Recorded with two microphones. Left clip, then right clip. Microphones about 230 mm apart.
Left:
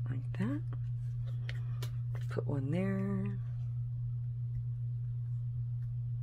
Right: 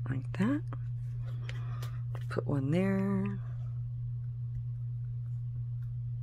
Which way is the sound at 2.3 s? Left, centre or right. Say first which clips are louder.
Right 5 dB; right.